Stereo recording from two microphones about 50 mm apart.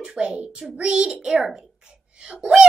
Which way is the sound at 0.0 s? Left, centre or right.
Right.